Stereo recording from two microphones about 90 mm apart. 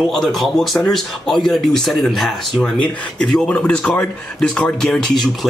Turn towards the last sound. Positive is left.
turn(degrees=5)  # may be behind; listen again after turning